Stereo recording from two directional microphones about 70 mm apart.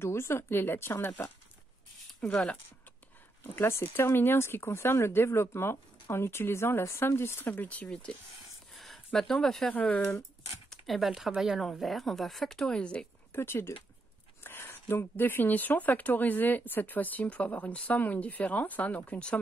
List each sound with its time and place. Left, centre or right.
0.0 s speech: left
2.2 s speech: centre
3.4 s speech: left
7.6 s speech: centre
8.7 s speech: centre
9.8 s speech: centre
10.7 s speech: centre
13.3 s speech: left; by 19.4 s centre